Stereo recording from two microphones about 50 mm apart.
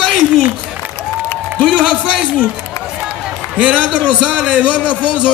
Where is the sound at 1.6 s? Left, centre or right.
Centre.